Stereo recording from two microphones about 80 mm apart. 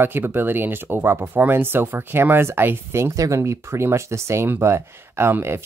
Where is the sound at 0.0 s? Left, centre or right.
Right.